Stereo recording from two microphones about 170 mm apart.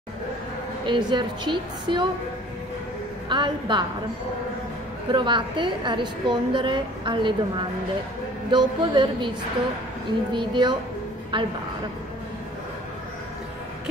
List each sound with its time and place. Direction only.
0.8 s a woman's voice: 30° right (ahead or behind)
3.3 s a woman's voice: 30° right (ahead or behind)
5.1 s a woman's voice: 30° right (ahead or behind)
10.3 s a woman's voice: 25° right (ahead or behind)